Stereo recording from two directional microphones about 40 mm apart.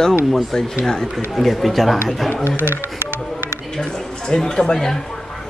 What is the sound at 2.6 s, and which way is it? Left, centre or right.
Speech, right.